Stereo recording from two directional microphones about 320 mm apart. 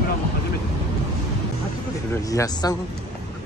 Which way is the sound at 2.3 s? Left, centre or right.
Centre.